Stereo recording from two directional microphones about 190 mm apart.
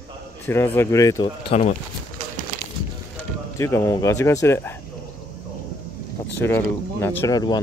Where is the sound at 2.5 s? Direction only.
45° right (ahead or behind).